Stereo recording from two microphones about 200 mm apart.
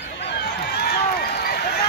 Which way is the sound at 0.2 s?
55° left (ahead or behind).